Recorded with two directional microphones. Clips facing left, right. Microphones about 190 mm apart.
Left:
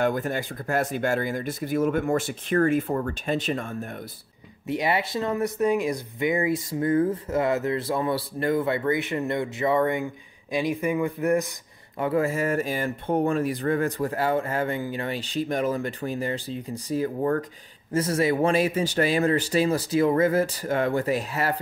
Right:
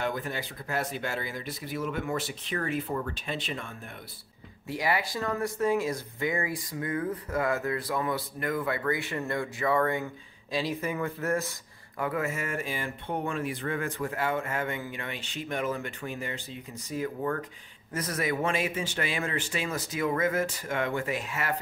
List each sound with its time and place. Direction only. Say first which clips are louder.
0.0 s speech: left 7 dB; 50° left (ahead or behind)
4.6 s speech: left 4 dB; 25° left (ahead or behind)
12.0 s speech: left 7 dB; 30° left (ahead or behind)